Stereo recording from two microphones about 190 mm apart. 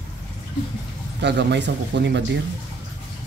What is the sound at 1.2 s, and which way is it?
A man's voice, 65° right (ahead or behind).